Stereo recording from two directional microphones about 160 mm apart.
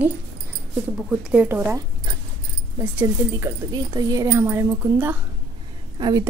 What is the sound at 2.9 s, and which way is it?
A woman's voice, 20° right (ahead or behind).